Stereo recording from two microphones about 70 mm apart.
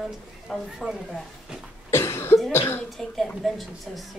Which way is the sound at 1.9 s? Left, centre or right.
Left.